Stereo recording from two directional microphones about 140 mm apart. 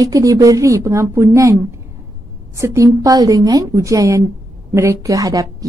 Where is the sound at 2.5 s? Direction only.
20° right (ahead or behind).